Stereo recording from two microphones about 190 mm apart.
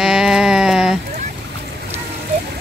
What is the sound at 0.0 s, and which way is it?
Sheep, 5° right (ahead or behind).